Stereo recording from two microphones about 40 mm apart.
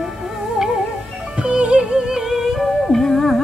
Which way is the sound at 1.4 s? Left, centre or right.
Right.